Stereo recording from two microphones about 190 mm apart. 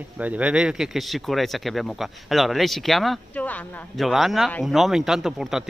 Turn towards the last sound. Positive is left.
turn(degrees=0)  # may be behind; listen again after turning